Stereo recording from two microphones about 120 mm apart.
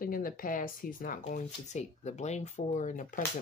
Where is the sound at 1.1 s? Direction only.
80° left.